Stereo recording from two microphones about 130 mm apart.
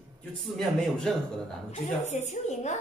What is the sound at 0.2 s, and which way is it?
Speech, 5° left (ahead or behind).